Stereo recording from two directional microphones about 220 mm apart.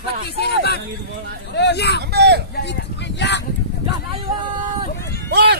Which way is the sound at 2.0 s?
50° right (ahead or behind).